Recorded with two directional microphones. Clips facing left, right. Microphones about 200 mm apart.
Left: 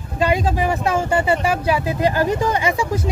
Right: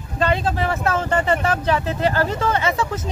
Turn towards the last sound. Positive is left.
turn(degrees=10)  # may be behind; listen again after turning